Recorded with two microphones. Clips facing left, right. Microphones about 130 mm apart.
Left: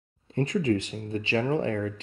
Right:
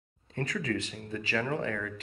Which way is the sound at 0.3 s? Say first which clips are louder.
Left 8 dB; 25° left (ahead or behind).